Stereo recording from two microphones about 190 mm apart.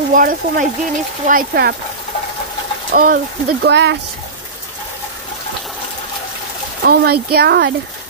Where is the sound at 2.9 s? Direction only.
50° right (ahead or behind); by 4.0 s 65° right (ahead or behind).